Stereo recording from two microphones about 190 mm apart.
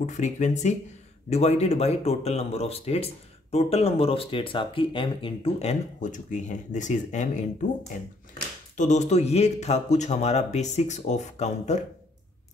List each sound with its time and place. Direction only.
0.0 s speech: 40° left (ahead or behind)
8.7 s speech: 40° left (ahead or behind)